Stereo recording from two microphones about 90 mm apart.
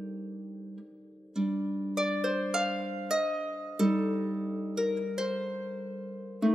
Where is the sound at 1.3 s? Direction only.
5° right (ahead or behind).